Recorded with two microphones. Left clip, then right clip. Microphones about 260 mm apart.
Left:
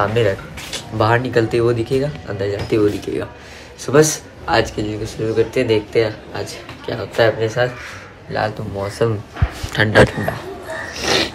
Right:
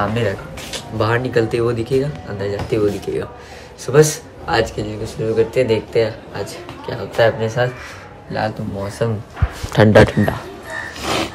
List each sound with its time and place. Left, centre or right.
0.0 s speech: centre
9.7 s speech: right
11.0 s a sound: centre